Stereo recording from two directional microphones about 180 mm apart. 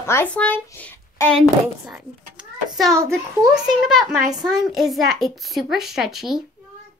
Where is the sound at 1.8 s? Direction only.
5° right (ahead or behind).